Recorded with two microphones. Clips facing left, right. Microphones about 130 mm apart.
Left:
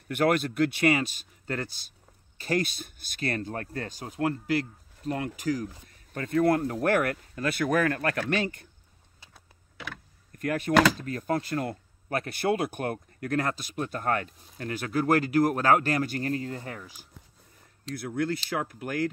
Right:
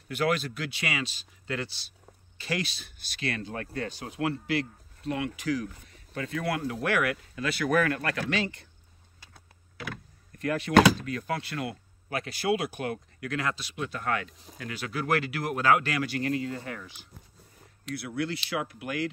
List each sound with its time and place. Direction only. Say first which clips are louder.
0.1 s speech: left 3 dB; 55° left (ahead or behind)
9.3 s power windows: even; centre (ahead or behind)
11.0 s speech: left 3 dB; 45° left (ahead or behind)